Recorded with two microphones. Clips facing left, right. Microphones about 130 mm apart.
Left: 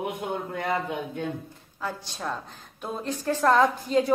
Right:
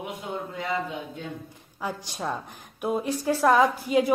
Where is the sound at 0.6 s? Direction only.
60° left (ahead or behind).